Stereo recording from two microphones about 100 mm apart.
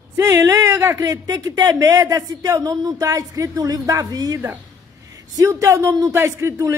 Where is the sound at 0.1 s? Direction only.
30° right (ahead or behind).